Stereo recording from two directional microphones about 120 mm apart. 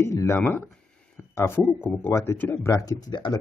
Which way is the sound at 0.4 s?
15° left (ahead or behind).